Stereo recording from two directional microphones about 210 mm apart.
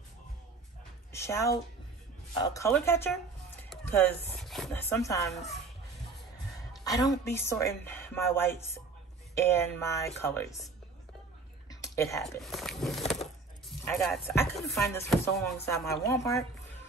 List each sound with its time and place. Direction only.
1.1 s a woman's voice: 15° left (ahead or behind)
2.7 s a woman's voice: 10° left (ahead or behind)
6.8 s a woman's voice: 15° left (ahead or behind)
11.7 s a sound: 15° left (ahead or behind)
12.4 s a sound: centre (ahead or behind)
14.4 s speech: centre (ahead or behind)
15.5 s a woman's voice: 10° left (ahead or behind)